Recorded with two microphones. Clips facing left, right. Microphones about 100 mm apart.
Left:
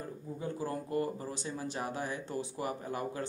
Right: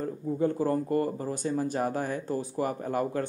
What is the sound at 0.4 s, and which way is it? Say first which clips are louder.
Speech: right 10 dB; 50° right (ahead or behind).